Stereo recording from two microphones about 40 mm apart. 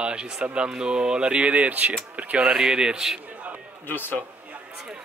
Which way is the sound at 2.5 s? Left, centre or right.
Right.